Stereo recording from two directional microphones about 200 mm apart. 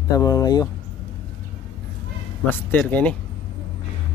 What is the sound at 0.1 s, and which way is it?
Speech, 15° left (ahead or behind).